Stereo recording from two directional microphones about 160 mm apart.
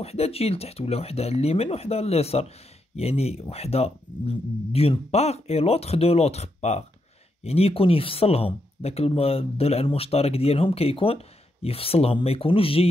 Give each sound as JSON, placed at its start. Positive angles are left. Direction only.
{"t": 0.0, "sound": "speech", "side_deg": 40}